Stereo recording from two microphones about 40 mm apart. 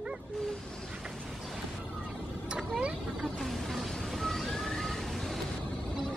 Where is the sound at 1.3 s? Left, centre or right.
Centre.